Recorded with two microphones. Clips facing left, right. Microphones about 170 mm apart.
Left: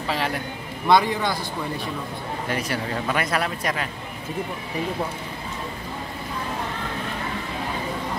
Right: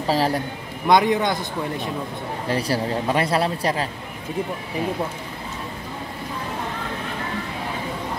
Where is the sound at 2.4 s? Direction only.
30° right (ahead or behind).